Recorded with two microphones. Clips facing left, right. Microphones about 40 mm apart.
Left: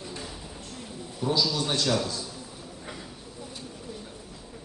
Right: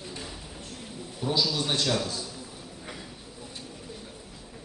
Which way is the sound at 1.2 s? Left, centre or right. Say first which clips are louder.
Left 1 dB; centre.